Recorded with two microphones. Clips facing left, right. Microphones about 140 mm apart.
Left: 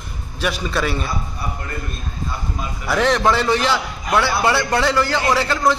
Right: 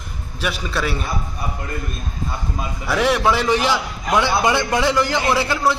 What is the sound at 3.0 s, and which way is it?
A man's voice, 10° right (ahead or behind).